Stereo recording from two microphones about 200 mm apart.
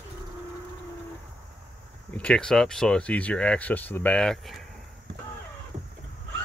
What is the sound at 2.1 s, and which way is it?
Speech, 5° left (ahead or behind).